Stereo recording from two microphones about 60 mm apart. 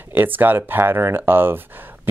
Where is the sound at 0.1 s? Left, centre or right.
Right.